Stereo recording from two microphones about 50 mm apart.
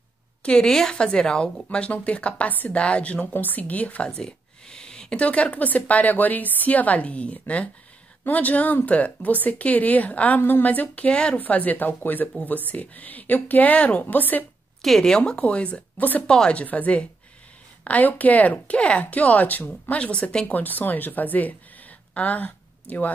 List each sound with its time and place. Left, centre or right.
0.4 s speech: centre
2.5 s a woman's voice: left
2.8 s a woman's voice: left
4.2 s a sound: centre
5.2 s a woman's voice: left
14.8 s speech: centre; by 16.3 s left
16.3 s speech: centre
16.6 s a woman's voice: left
19.9 s speech: left
20.4 s a woman's voice: left